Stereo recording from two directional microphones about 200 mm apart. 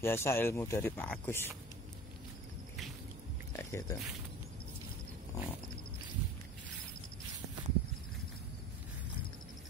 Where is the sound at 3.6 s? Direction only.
15° left (ahead or behind).